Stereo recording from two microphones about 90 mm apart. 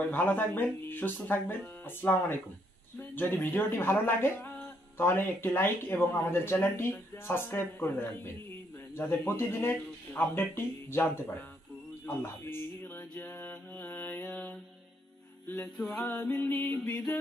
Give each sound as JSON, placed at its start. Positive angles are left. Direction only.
{"t": 0.1, "sound": "a man's voice", "side_deg": 20}
{"t": 12.1, "sound": "music", "side_deg": 25}
{"t": 13.4, "sound": "mantra", "side_deg": 20}
{"t": 15.4, "sound": "music", "side_deg": 10}
{"t": 16.0, "sound": "speech", "side_deg": 20}